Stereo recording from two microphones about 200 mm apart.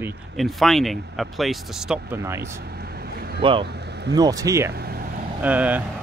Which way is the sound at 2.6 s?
50° right (ahead or behind).